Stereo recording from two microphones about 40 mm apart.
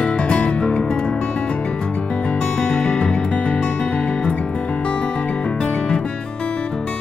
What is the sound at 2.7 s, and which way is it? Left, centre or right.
Music, left.